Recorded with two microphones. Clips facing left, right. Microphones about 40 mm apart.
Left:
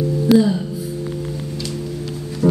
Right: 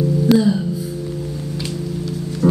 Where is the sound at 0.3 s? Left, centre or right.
Centre.